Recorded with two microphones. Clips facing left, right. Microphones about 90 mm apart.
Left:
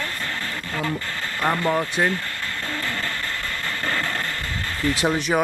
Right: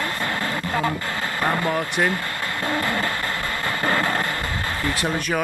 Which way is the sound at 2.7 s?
15° right (ahead or behind).